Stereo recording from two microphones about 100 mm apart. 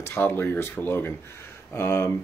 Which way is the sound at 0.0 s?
25° left (ahead or behind).